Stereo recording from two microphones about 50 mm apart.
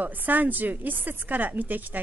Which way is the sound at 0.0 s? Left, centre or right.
Right.